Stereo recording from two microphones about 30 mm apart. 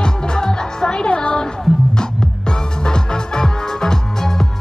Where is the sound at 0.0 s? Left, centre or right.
Left.